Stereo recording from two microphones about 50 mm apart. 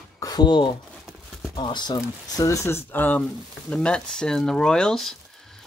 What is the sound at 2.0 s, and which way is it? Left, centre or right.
Speech, left.